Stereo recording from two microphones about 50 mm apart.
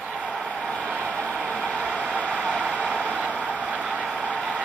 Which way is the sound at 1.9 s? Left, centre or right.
Right.